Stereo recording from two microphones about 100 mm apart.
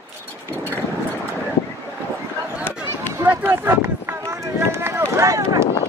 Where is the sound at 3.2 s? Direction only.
20° right (ahead or behind).